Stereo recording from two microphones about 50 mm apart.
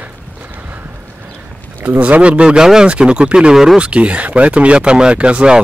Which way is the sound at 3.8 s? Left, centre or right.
Right.